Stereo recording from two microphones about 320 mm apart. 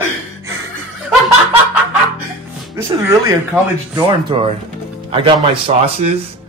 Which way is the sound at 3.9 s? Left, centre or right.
Centre.